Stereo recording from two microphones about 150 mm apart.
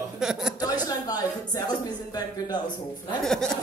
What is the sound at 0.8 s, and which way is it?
Speech, 25° left (ahead or behind).